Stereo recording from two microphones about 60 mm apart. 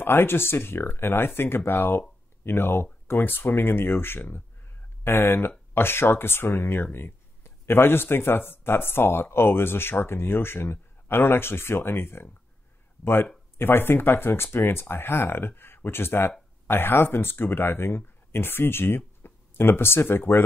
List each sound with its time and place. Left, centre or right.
0.0 s speech: left